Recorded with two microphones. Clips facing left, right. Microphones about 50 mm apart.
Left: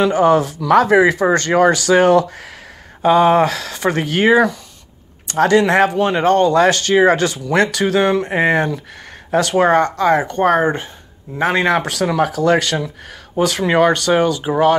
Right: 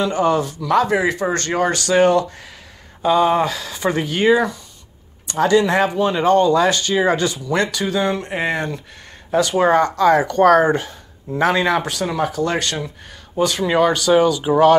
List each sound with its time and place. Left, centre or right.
0.0 s speech: left
3.0 s speech: left
5.2 s speech: left
9.3 s speech: left
9.7 s speech: left
11.4 s speech: left
11.8 s speech: left
13.7 s speech: left
14.4 s speech: centre